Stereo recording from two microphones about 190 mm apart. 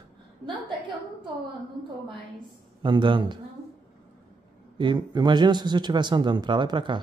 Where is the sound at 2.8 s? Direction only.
25° right (ahead or behind).